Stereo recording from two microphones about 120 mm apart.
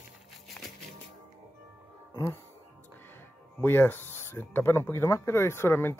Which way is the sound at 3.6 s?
15° left (ahead or behind).